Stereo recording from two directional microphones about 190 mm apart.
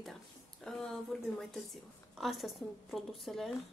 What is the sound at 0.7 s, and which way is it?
Speech, centre (ahead or behind).